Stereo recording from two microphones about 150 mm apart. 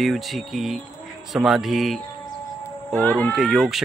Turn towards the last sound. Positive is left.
turn(degrees=0)  # may be behind; listen again after turning